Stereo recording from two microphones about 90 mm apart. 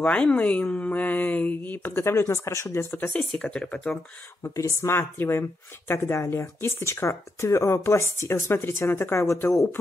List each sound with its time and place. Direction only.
0.0 s speech: 15° left (ahead or behind); by 2.9 s 30° left (ahead or behind)
3.0 s speech: 15° left (ahead or behind)
3.9 s speech: 30° left (ahead or behind)